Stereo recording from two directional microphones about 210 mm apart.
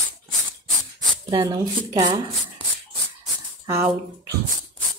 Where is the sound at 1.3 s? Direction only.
20° right (ahead or behind).